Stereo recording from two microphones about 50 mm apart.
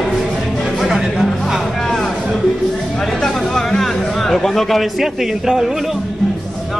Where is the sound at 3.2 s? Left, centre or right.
Centre.